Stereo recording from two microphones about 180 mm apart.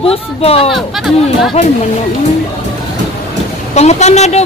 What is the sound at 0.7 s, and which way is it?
Speech, centre (ahead or behind).